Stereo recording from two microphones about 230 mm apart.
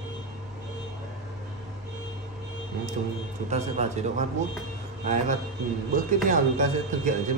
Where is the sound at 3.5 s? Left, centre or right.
Right.